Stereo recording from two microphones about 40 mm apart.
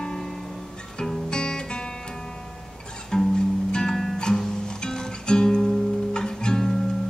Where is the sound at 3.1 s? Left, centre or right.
Centre.